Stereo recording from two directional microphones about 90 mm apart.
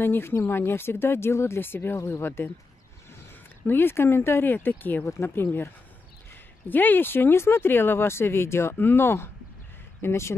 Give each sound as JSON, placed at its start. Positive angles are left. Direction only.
{"t": 0.0, "sound": "speech", "side_deg": 25}
{"t": 3.6, "sound": "speech", "side_deg": 25}
{"t": 6.7, "sound": "speech", "side_deg": 20}